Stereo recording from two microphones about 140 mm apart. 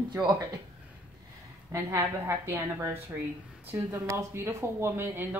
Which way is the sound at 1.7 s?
20° right (ahead or behind).